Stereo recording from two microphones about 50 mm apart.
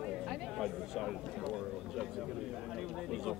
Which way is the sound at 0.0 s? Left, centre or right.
Centre.